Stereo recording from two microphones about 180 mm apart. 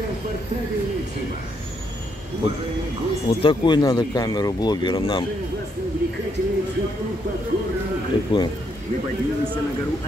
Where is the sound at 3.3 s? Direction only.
30° left (ahead or behind).